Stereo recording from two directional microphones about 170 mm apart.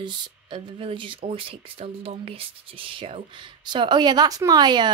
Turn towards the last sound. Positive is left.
turn(degrees=-25)  # may be behind; listen again after turning